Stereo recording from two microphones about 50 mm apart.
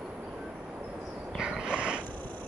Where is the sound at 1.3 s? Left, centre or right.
Centre.